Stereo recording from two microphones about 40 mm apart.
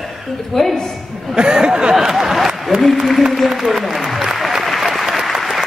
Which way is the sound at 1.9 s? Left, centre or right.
Centre.